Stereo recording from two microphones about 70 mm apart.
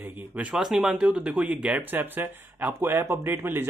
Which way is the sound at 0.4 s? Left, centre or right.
Centre.